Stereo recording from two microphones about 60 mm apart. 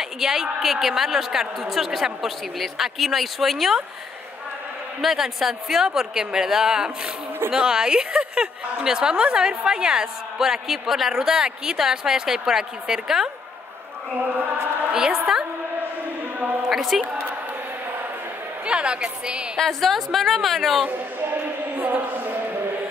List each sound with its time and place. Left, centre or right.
0.0 s a woman's voice: centre
5.0 s a woman's voice: centre
14.9 s a woman's voice: centre
16.3 s a sound: right
16.6 s a woman's voice: centre
18.7 s a woman's voice: centre
19.6 s a woman's voice: centre
21.2 s a sound: right